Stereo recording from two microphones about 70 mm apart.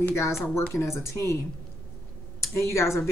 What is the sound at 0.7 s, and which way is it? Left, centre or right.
Speech, left.